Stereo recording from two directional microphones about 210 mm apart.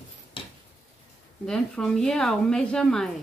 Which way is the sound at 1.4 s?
5° left (ahead or behind).